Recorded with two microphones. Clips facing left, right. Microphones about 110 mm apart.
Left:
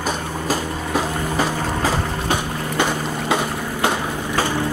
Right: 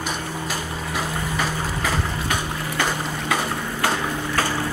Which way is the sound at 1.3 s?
30° left (ahead or behind).